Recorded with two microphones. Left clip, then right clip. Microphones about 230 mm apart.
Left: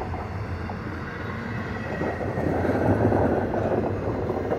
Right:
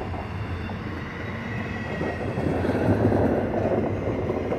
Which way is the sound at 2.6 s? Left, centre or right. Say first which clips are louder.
Left 1 dB; right.